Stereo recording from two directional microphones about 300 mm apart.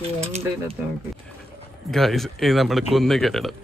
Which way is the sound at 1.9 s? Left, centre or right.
Centre.